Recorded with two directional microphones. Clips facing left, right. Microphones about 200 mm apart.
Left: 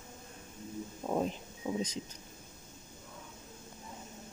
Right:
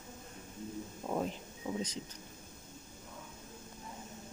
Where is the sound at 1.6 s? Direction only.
15° left (ahead or behind).